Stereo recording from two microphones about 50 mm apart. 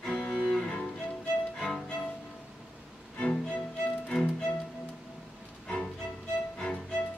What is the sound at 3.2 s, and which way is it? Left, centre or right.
Music, centre.